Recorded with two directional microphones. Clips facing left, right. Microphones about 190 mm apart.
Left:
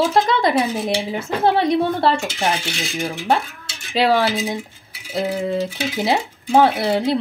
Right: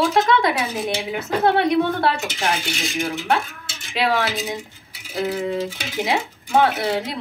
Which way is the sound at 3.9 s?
35° left (ahead or behind).